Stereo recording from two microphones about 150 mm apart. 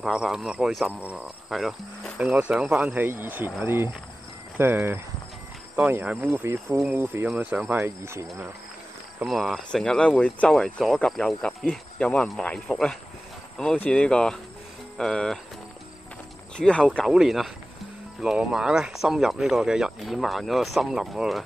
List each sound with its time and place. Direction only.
0.0 s speech: 5° right (ahead or behind)
9.2 s speech: centre (ahead or behind)
16.5 s speech: 5° left (ahead or behind)